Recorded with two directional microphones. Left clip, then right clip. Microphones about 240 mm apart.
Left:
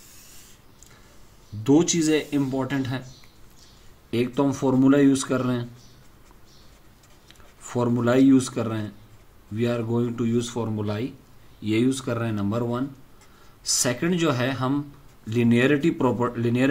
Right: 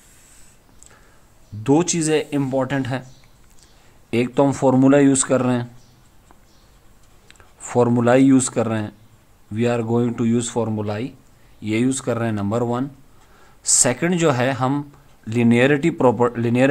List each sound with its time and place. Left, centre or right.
1.6 s speech: right
4.1 s speech: right
7.2 s speech: right